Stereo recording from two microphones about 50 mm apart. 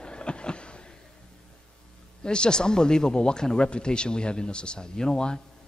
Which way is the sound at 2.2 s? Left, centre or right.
Centre.